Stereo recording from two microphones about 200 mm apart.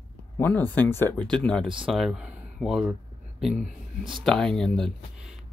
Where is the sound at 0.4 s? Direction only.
10° left (ahead or behind).